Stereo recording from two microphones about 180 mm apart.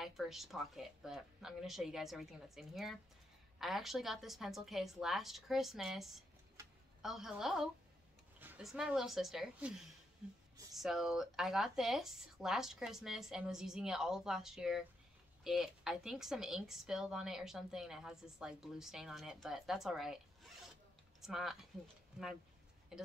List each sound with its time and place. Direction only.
0.0 s speech: centre (ahead or behind)
6.6 s a sound: 20° right (ahead or behind)
7.0 s speech: centre (ahead or behind)
10.8 s speech: centre (ahead or behind)
22.9 s speech: 5° right (ahead or behind)